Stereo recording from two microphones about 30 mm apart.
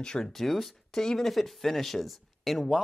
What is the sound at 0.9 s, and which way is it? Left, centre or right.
Speech, centre.